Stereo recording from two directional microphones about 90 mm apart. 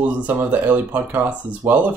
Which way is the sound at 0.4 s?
20° right (ahead or behind).